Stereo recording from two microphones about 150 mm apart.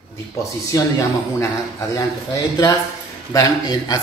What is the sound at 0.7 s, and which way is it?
Speech, 20° left (ahead or behind).